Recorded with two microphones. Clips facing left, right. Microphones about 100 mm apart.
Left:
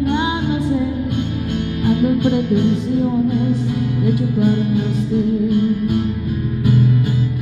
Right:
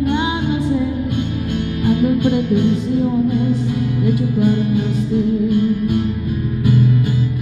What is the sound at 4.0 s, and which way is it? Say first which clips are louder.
Music: even; 35° left (ahead or behind).